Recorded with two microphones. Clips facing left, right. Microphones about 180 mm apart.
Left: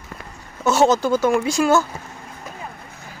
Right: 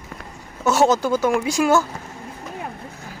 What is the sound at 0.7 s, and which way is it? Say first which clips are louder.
Speech: left 1 dB; 10° right (ahead or behind).